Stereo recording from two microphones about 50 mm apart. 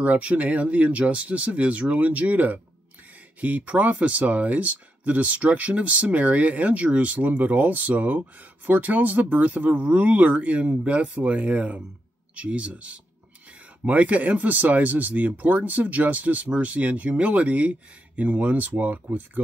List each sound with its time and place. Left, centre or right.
0.0 s speech: right